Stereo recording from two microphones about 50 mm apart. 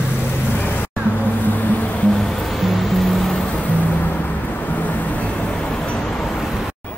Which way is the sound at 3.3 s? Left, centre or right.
Left.